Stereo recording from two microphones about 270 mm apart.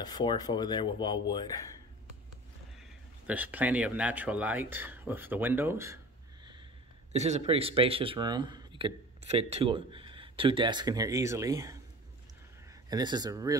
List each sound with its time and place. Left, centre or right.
0.0 s speech: centre
3.3 s speech: centre
7.1 s speech: right
12.9 s speech: centre